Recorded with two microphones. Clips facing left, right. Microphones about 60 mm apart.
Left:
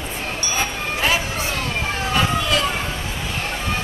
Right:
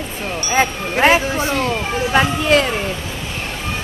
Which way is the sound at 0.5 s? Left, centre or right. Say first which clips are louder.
Right 8 dB; right.